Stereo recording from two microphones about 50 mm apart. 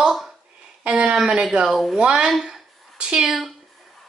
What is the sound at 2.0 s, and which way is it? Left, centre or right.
A woman's voice, centre.